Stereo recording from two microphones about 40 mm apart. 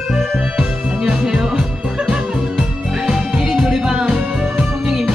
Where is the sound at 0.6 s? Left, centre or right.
Centre.